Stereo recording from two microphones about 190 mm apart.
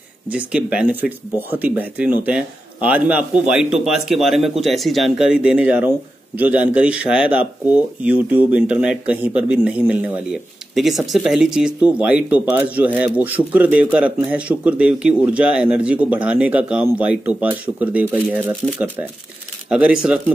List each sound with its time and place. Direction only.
0.3 s speech: 5° right (ahead or behind)